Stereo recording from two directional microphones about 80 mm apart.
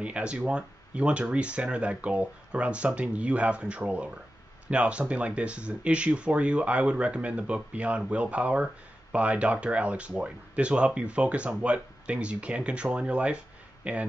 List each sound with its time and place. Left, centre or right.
0.0 s speech: centre